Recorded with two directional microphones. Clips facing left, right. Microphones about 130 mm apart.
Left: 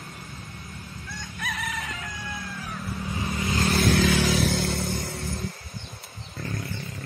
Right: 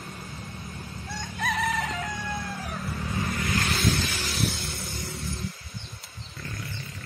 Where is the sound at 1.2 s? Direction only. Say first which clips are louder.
Right 5 dB; 55° right (ahead or behind).